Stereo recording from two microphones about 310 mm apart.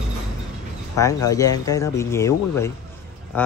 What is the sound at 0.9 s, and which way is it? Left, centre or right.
Speech, centre.